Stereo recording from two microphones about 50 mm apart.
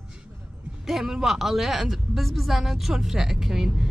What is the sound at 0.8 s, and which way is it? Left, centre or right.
A woman's voice, centre.